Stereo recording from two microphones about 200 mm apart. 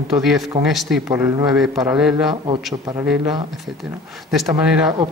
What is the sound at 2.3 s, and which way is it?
Speech, 25° right (ahead or behind).